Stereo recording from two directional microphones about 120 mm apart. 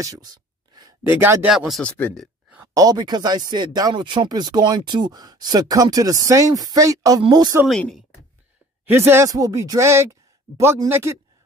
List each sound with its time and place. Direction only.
0.0 s a sound: 30° right (ahead or behind)
1.0 s speech: 20° right (ahead or behind)
1.5 s speech: centre (ahead or behind)
2.7 s speech: 30° right (ahead or behind)
8.8 s speech: 20° right (ahead or behind)